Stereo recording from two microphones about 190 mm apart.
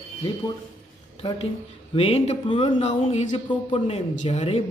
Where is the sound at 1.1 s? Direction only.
30° left (ahead or behind).